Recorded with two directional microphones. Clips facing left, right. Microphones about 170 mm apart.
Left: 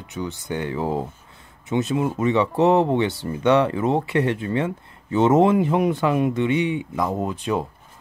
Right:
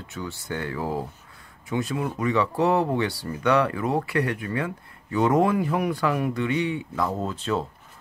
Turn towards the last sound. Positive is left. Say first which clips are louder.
# left 3 dB
turn(degrees=15)  # may be behind; listen again after turning